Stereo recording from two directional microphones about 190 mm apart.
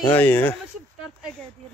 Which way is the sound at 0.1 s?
10° left (ahead or behind).